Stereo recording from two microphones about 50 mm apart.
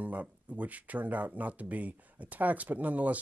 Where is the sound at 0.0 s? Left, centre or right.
Right.